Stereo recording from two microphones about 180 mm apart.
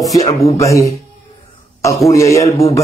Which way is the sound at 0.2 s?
20° left (ahead or behind).